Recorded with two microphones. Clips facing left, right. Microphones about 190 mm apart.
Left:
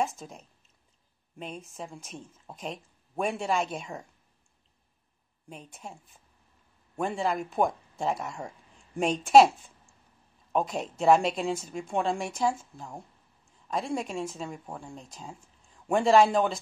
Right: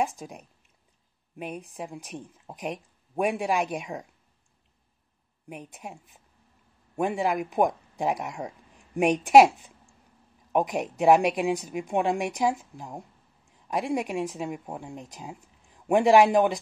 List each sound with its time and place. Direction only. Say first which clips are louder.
0.0 s speech: right 2 dB; 15° right (ahead or behind)
5.5 s speech: right 4 dB; 15° right (ahead or behind)